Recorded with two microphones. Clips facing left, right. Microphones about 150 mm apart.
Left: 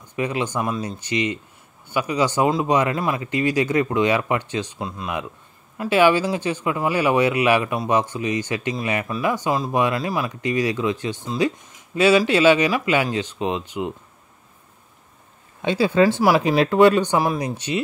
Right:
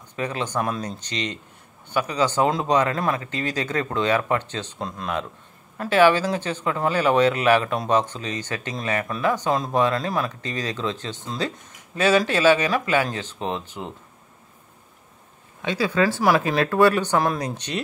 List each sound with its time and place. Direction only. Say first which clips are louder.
0.1 s speech: left 3 dB; 15° left (ahead or behind)
15.6 s speech: left 4 dB; 25° left (ahead or behind)
16.0 s speech: left 3 dB; 15° left (ahead or behind)